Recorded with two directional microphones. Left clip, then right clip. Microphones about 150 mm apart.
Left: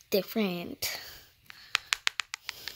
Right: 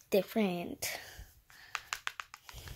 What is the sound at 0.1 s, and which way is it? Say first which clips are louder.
A woman's voice: left 2 dB; 20° left (ahead or behind).